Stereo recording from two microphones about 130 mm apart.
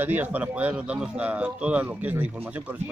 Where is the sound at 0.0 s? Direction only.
15° right (ahead or behind).